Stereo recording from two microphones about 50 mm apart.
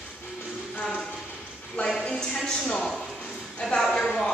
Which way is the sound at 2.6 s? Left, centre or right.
Centre.